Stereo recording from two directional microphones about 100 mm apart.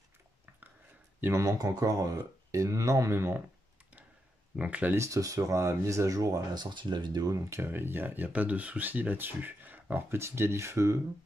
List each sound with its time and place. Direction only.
1.2 s speech: 30° right (ahead or behind)
4.6 s speech: 15° right (ahead or behind)
4.9 s speech: 30° right (ahead or behind)